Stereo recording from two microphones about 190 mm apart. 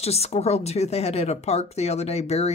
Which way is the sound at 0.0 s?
35° left (ahead or behind).